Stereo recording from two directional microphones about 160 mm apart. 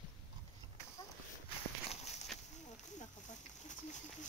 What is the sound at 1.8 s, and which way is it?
Walk, 45° left (ahead or behind).